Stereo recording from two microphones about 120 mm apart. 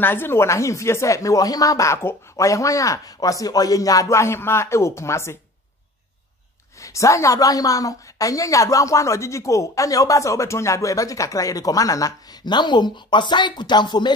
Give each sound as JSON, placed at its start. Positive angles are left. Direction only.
{"t": 0.0, "sound": "a woman's voice", "side_deg": 20}
{"t": 6.8, "sound": "a woman's voice", "side_deg": 25}